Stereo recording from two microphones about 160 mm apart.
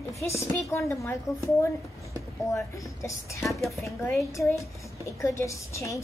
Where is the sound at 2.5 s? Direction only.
20° left (ahead or behind).